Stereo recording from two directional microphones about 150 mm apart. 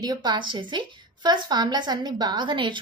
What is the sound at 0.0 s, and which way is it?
A woman's voice, 30° right (ahead or behind).